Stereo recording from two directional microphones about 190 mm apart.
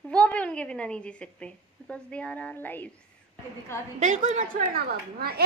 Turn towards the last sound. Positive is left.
turn(degrees=-55)  # may be behind; listen again after turning